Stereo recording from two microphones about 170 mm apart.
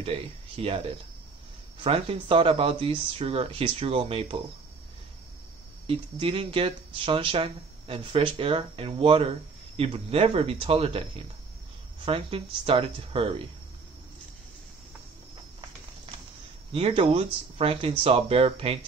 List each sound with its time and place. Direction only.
0.0 s speech: 35° right (ahead or behind)
5.9 s speech: 30° right (ahead or behind)
16.7 s speech: 35° right (ahead or behind)